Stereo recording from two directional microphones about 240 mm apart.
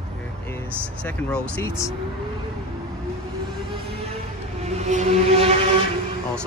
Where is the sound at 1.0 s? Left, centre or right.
Centre.